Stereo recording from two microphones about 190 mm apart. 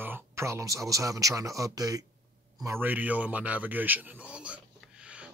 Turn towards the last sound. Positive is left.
turn(degrees=-5)  # may be behind; listen again after turning